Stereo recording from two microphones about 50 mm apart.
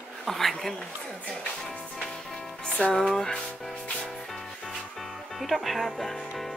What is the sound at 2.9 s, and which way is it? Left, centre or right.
Music, centre.